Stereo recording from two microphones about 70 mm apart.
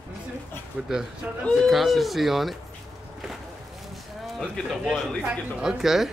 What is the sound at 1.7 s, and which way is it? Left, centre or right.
Speech, centre.